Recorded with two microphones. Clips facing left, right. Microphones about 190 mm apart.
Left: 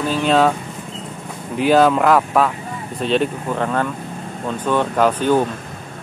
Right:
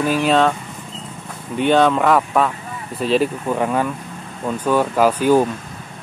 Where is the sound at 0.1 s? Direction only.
5° right (ahead or behind).